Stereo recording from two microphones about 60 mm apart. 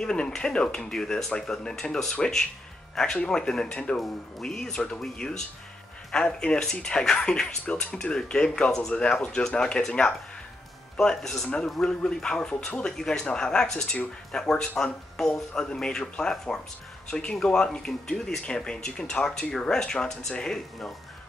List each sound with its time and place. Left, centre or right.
0.0 s speech: centre